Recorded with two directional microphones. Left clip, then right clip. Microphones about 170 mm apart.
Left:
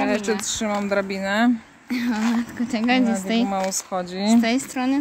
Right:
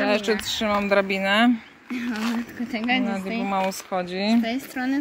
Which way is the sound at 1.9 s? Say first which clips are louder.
Left 4 dB; 50° left (ahead or behind).